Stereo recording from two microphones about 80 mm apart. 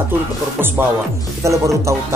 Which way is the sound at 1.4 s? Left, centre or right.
Right.